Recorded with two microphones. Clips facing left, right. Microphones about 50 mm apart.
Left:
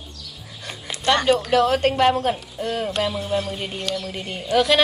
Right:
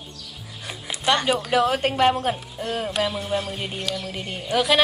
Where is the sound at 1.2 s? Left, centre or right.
Centre.